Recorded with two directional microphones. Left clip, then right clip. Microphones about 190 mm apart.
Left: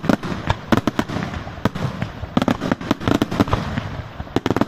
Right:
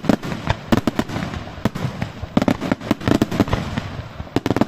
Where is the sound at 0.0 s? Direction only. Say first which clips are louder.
Even; 5° right (ahead or behind).